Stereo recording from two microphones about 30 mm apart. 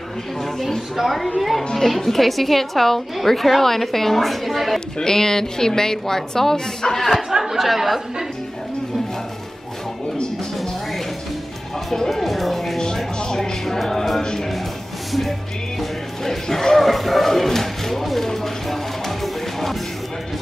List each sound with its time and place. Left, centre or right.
1.0 s a woman's voice: centre
4.7 s a woman's voice: left
7.0 s a woman's voice: centre
7.2 s speech: centre
7.5 s a woman's voice: centre
12.1 s music: centre
12.8 s music: left
15.8 s music: centre
16.8 s a sound: centre
18.2 s music: centre